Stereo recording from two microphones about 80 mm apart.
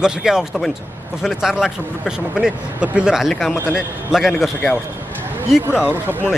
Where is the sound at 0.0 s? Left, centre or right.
Centre.